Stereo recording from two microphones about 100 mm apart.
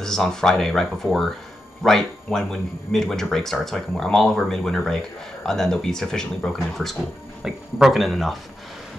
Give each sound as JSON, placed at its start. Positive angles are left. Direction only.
{"t": 0.0, "sound": "speech", "side_deg": 5}